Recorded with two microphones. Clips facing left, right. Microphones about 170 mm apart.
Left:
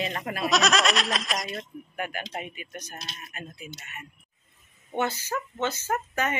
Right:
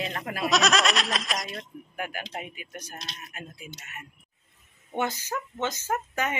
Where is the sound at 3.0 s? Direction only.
5° left (ahead or behind).